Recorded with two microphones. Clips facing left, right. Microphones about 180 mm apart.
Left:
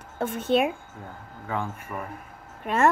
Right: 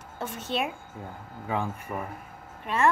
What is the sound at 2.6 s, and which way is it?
Speech, 45° left (ahead or behind).